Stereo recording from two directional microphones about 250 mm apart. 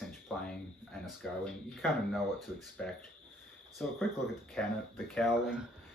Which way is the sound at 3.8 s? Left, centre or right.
Centre.